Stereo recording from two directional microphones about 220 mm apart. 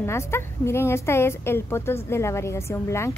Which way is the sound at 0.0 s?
10° left (ahead or behind).